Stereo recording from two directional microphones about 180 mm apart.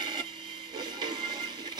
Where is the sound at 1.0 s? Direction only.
25° right (ahead or behind).